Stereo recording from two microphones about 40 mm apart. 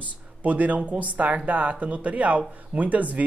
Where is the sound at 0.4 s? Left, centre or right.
Right.